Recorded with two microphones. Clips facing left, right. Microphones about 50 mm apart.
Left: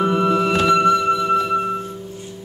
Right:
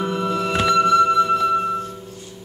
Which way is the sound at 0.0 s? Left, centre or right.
Left.